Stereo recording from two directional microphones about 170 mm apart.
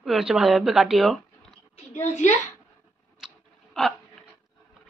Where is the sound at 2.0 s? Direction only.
40° left (ahead or behind).